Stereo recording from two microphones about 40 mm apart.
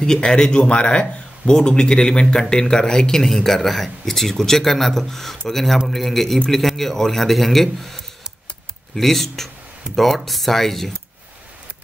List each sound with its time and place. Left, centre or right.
0.0 s a man's voice: centre